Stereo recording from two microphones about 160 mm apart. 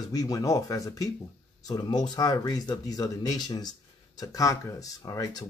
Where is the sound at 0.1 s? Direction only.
20° left (ahead or behind).